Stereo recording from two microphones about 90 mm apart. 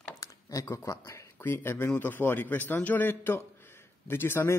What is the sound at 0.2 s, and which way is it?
A man's voice, 35° left (ahead or behind).